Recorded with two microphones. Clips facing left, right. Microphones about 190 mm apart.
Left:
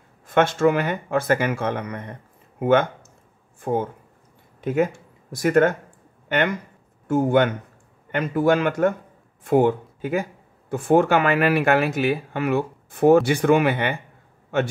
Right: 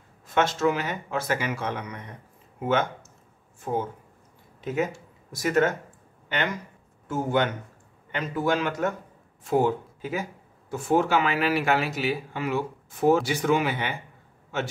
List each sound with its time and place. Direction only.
0.3 s speech: 55° left (ahead or behind)